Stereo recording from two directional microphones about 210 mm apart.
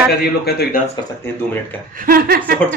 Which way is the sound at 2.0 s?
45° right (ahead or behind).